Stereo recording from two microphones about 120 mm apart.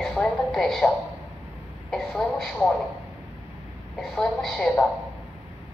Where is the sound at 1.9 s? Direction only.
5° left (ahead or behind).